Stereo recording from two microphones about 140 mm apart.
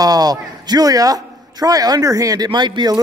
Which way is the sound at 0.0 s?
25° right (ahead or behind).